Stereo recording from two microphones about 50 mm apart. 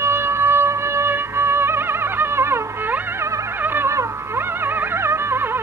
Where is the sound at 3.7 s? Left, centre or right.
Right.